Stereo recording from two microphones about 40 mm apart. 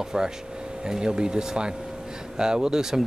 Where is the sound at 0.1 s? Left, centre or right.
Centre.